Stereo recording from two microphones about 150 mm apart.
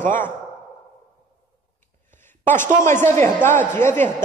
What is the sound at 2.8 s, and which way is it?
A man's voice, 15° left (ahead or behind).